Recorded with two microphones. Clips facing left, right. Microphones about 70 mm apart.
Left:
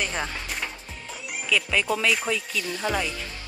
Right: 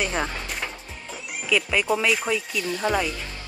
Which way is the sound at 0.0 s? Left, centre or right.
Centre.